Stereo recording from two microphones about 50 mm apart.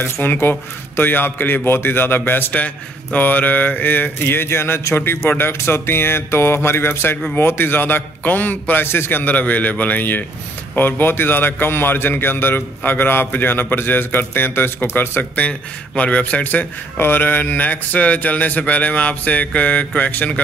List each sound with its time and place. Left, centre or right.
0.0 s a man's voice: left
2.5 s a man's voice: left
8.8 s a man's voice: left
16.0 s a man's voice: left